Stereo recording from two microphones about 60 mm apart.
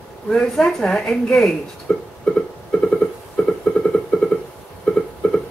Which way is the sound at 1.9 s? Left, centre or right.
Centre.